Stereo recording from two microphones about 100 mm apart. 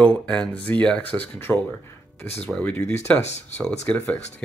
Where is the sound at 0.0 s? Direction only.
10° left (ahead or behind).